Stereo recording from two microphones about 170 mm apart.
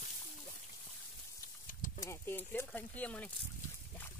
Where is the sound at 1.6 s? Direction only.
50° left (ahead or behind).